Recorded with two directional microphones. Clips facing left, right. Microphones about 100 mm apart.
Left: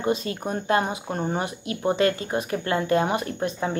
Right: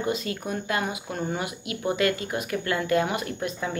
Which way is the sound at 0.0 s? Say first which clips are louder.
Left 3 dB; 30° left (ahead or behind).